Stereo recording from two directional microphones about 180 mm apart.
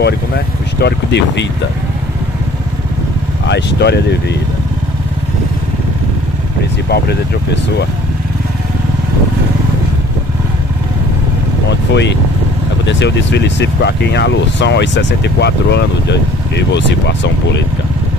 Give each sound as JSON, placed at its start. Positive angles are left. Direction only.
{"t": 0.0, "sound": "speech", "side_deg": 65}
{"t": 3.4, "sound": "speech", "side_deg": 70}
{"t": 11.9, "sound": "speech", "side_deg": 75}